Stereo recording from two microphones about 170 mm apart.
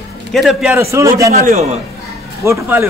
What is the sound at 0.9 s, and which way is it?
Speech, 15° right (ahead or behind).